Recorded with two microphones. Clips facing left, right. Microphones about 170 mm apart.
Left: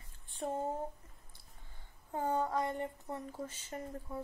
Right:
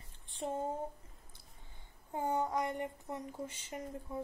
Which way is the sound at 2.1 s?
20° right (ahead or behind).